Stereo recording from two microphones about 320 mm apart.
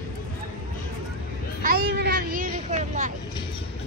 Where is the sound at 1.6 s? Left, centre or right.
Right.